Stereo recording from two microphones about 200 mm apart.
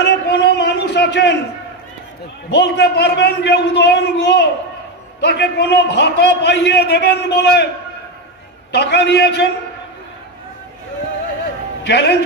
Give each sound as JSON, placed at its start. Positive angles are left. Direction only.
{"t": 0.0, "sound": "a sound", "side_deg": 55}
{"t": 2.5, "sound": "a man's voice", "side_deg": 55}
{"t": 8.7, "sound": "a man's voice", "side_deg": 55}
{"t": 11.8, "sound": "a man's voice", "side_deg": 55}